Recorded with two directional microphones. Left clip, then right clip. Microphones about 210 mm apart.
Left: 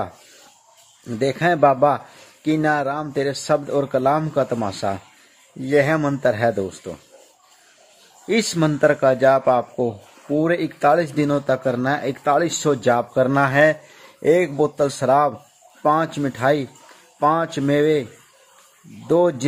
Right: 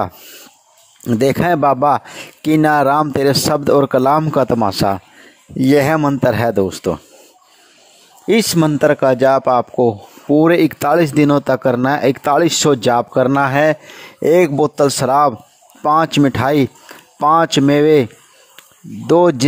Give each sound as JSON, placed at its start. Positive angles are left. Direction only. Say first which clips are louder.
{"t": 1.1, "sound": "speech", "louder": "right 5 dB", "side_deg": -55}
{"t": 8.3, "sound": "speech", "louder": "right 6 dB", "side_deg": -40}
{"t": 19.0, "sound": "speech", "louder": "right 6 dB", "side_deg": -45}